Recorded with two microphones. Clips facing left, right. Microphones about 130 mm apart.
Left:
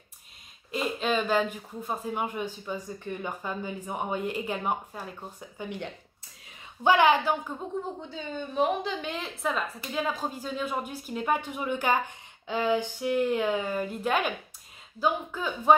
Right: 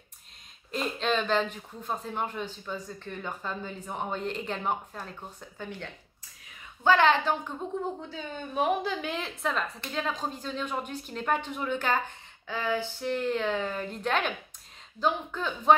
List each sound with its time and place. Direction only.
0.7 s a woman's voice: 5° left (ahead or behind)
7.7 s a woman's voice: centre (ahead or behind)